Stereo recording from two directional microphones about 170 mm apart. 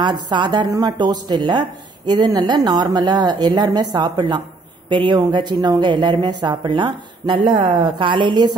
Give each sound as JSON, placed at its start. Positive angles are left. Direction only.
{"t": 0.0, "sound": "a woman's voice", "side_deg": -25}